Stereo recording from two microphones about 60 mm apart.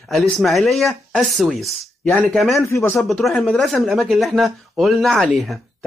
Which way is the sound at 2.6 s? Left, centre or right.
Left.